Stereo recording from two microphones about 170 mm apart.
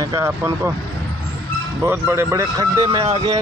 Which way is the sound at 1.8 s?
15° right (ahead or behind).